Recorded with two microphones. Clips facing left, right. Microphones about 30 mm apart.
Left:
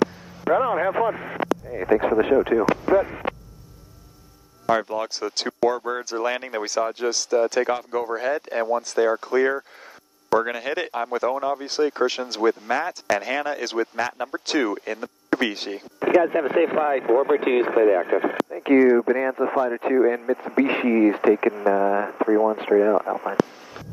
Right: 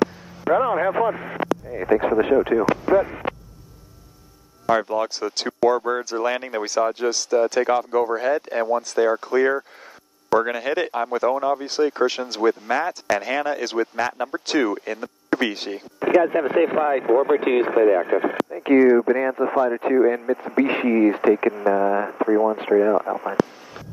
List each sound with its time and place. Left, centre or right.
0.0 s vehicle: centre
2.8 s speech: centre
4.6 s speech: centre
20.2 s speech: centre
20.6 s speech: centre